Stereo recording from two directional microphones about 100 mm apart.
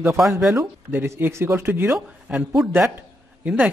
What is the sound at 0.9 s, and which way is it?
Speech, 20° right (ahead or behind).